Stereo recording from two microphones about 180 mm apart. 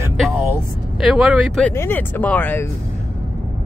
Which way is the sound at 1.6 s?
10° left (ahead or behind).